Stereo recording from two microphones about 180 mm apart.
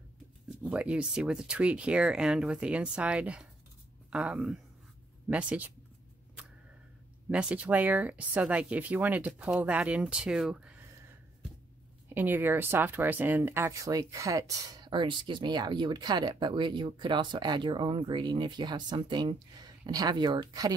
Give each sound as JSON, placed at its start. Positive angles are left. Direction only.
{"t": 0.6, "sound": "speech", "side_deg": -5}
{"t": 7.2, "sound": "speech", "side_deg": -5}
{"t": 12.1, "sound": "speech", "side_deg": -10}